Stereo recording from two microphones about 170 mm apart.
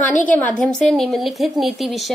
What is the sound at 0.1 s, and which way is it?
Speech, 50° left (ahead or behind).